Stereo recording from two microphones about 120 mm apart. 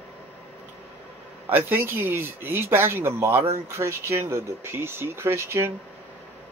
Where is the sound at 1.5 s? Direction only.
20° right (ahead or behind).